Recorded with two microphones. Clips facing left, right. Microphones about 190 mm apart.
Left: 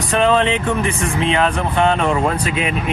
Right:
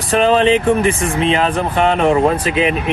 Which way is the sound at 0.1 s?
30° right (ahead or behind).